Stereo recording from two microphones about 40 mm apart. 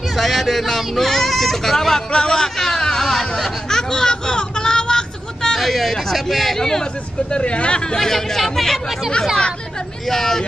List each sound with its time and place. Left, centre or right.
0.1 s speech: centre
6.6 s speech: centre
8.1 s speech: centre
10.0 s speech: centre